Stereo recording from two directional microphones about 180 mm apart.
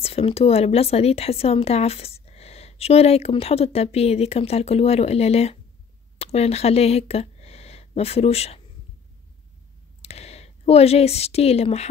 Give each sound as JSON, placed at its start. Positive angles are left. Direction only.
{"t": 0.0, "sound": "speech", "side_deg": 35}
{"t": 10.0, "sound": "a woman's voice", "side_deg": 35}